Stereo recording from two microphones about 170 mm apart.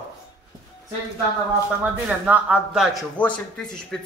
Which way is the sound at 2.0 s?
5° right (ahead or behind).